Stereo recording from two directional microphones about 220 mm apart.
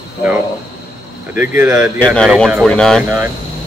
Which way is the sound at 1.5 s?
5° right (ahead or behind).